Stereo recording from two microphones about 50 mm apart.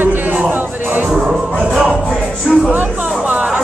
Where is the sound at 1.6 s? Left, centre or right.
Centre.